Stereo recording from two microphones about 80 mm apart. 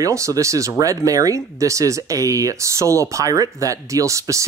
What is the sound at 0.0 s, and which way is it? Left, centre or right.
Speech, right.